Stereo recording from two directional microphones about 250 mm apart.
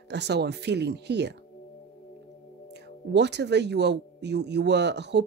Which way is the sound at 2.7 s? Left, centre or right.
Right.